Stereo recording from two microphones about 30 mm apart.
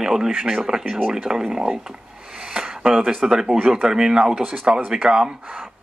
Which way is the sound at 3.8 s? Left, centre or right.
Right.